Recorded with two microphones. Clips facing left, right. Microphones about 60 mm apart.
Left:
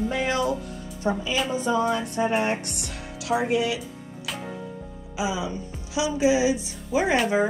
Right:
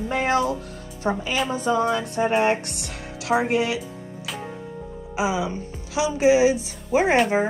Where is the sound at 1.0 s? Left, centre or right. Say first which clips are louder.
Right 1 dB; right.